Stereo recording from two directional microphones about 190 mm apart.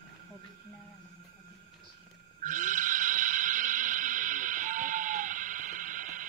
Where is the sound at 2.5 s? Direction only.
45° right (ahead or behind).